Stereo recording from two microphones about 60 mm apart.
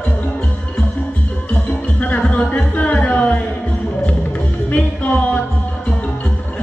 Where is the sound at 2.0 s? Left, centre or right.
Left.